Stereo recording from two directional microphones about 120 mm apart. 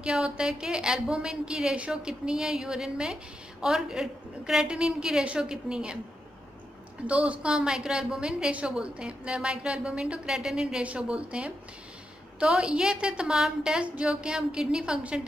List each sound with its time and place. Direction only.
0.0 s a woman's voice: 5° right (ahead or behind)
7.1 s a woman's voice: 10° right (ahead or behind)